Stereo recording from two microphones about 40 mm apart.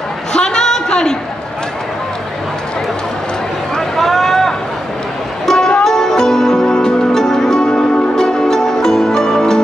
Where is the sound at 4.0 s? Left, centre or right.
Centre.